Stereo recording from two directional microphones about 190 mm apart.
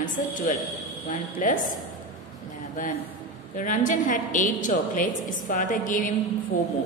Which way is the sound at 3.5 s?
45° left (ahead or behind).